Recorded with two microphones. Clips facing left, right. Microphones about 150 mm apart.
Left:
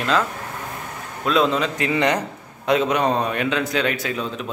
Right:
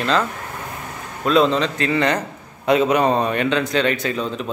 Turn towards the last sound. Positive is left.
turn(degrees=5)  # may be behind; listen again after turning